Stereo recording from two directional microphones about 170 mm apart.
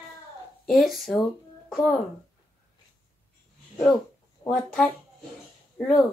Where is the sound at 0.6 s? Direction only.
Centre (ahead or behind).